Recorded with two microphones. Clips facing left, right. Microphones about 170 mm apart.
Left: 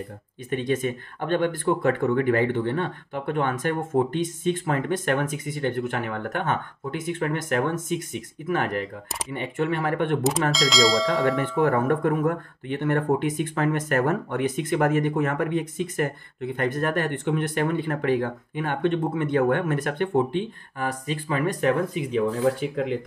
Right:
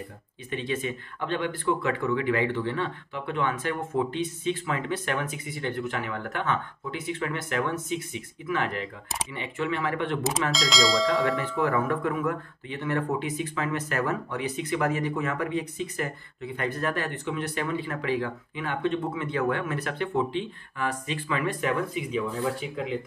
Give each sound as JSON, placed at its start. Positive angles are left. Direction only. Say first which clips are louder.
{"t": 0.5, "sound": "speech", "louder": "left 5 dB", "side_deg": 50}
{"t": 10.5, "sound": "speech", "louder": "left 2 dB", "side_deg": 0}
{"t": 11.6, "sound": "speech", "louder": "left 5 dB", "side_deg": 50}